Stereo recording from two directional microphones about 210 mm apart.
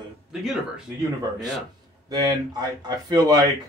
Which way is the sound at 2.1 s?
20° right (ahead or behind).